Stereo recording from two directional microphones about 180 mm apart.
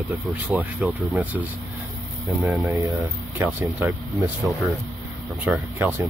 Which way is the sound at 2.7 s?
15° right (ahead or behind).